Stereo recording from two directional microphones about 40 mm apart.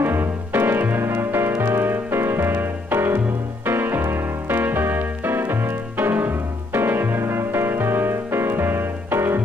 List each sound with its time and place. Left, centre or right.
0.0 s music: right
1.6 s music: right